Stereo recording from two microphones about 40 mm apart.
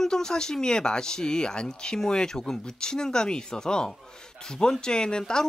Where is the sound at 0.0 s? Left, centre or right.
Centre.